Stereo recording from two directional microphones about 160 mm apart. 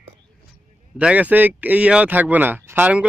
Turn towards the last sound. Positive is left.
turn(degrees=-10)  # may be behind; listen again after turning